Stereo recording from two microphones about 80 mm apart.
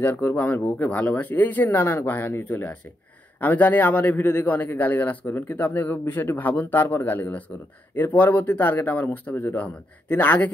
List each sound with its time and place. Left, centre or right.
0.0 s a man's voice: left